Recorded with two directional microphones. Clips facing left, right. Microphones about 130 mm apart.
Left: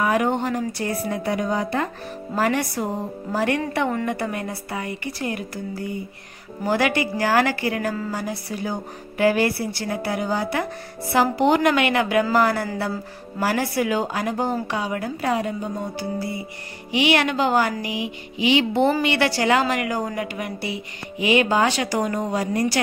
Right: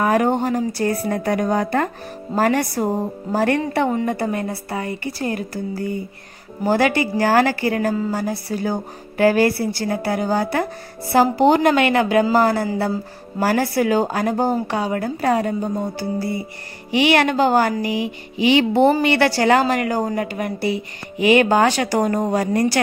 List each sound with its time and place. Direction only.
0.0 s a woman's voice: 40° right (ahead or behind)